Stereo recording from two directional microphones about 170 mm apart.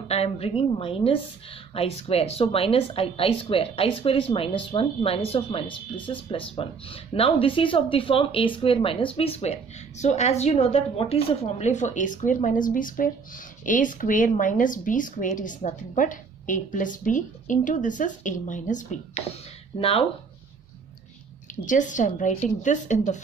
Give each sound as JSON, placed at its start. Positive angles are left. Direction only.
{"t": 0.1, "sound": "speech", "side_deg": 35}
{"t": 19.8, "sound": "speech", "side_deg": 35}
{"t": 21.6, "sound": "speech", "side_deg": 50}